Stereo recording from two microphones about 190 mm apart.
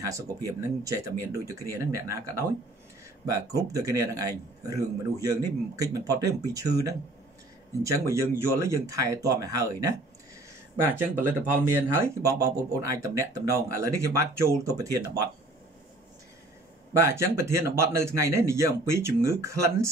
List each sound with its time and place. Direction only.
0.0 s a man's voice: 20° right (ahead or behind)
17.0 s speech: 15° right (ahead or behind)